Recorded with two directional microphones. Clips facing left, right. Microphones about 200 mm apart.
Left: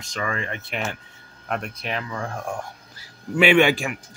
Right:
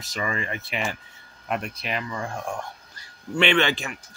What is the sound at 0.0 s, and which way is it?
Speech, 5° right (ahead or behind).